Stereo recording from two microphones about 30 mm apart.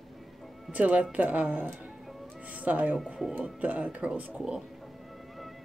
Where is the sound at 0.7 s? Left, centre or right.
Right.